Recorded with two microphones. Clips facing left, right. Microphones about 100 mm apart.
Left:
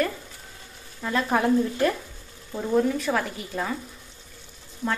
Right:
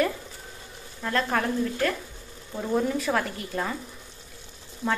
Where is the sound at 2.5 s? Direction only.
Centre (ahead or behind).